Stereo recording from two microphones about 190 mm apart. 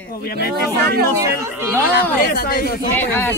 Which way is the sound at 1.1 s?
15° right (ahead or behind).